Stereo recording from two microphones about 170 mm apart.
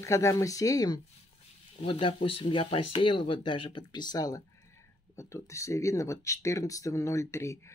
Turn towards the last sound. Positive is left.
turn(degrees=15)  # may be behind; listen again after turning